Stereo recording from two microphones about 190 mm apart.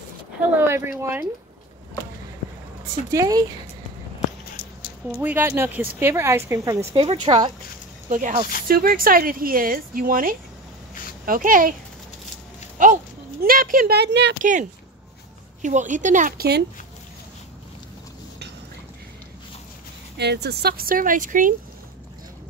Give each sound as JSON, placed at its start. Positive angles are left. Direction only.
{"t": 0.4, "sound": "speech", "side_deg": -10}
{"t": 3.1, "sound": "speech", "side_deg": -20}
{"t": 5.2, "sound": "speech", "side_deg": -10}
{"t": 8.1, "sound": "speech", "side_deg": -40}
{"t": 12.7, "sound": "speech", "side_deg": -45}
{"t": 14.4, "sound": "a woman's voice", "side_deg": -45}
{"t": 20.2, "sound": "speech", "side_deg": -60}